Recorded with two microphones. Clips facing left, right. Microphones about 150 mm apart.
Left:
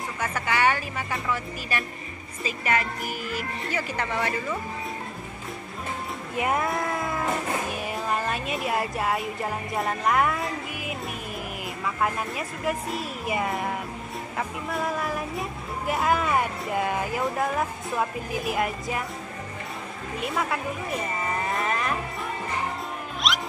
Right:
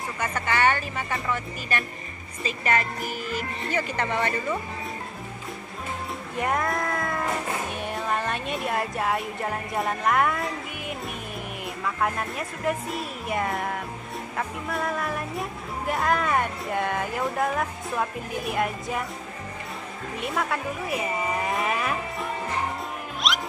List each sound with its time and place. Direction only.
0.2 s speech: 5° left (ahead or behind)
6.3 s music: 5° left (ahead or behind)
11.6 s speech: centre (ahead or behind)
20.2 s insect: centre (ahead or behind)
23.2 s music: centre (ahead or behind)